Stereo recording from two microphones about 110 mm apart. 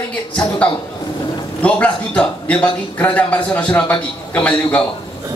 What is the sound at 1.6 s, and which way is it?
A man's voice, 10° left (ahead or behind).